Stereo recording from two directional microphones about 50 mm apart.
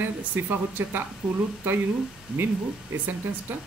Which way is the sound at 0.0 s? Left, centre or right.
Right.